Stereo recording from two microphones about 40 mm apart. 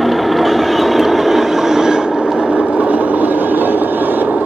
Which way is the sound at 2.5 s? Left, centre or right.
Right.